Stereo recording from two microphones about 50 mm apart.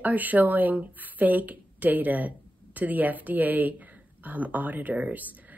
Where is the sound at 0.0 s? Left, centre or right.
Right.